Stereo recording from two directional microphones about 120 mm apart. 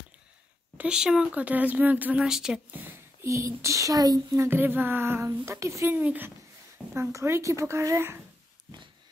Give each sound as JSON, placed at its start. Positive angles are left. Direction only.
{"t": 0.7, "sound": "speech", "side_deg": -5}
{"t": 2.7, "sound": "speech", "side_deg": -20}
{"t": 4.5, "sound": "speech", "side_deg": -15}